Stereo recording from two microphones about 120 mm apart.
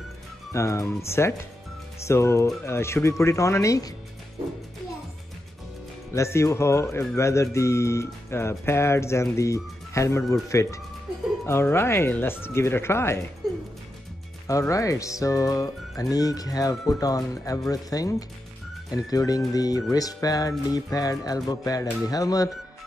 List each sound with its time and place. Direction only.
0.5 s speech: 25° left (ahead or behind)
6.1 s speech: 25° left (ahead or behind)
14.5 s speech: 25° left (ahead or behind)